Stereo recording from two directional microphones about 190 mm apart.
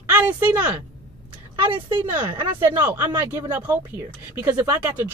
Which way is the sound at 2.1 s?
10° right (ahead or behind).